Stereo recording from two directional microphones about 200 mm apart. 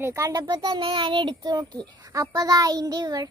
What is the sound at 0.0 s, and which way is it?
A child's voice, 15° right (ahead or behind).